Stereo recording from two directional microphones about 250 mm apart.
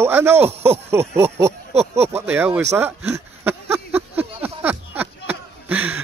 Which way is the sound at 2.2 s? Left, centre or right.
Centre.